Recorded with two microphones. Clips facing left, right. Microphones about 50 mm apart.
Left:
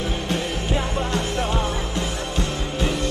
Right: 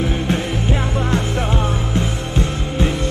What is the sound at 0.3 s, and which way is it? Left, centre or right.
Music, right.